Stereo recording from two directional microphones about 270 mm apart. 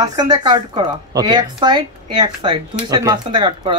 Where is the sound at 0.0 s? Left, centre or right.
Centre.